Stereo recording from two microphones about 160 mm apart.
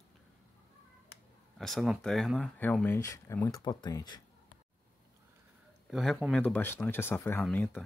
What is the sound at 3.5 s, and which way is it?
Speech, 25° left (ahead or behind).